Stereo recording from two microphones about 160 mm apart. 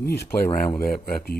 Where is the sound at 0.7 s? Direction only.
65° left (ahead or behind).